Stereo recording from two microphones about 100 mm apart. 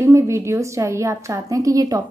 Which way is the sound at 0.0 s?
30° right (ahead or behind).